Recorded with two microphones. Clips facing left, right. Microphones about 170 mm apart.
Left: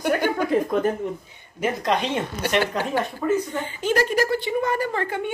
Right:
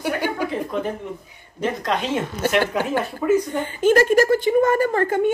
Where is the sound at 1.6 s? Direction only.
Centre (ahead or behind).